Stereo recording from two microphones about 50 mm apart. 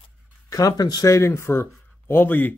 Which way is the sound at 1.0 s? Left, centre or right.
Left.